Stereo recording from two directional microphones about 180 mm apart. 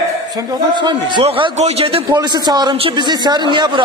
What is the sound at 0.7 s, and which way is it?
A man's voice, 25° right (ahead or behind).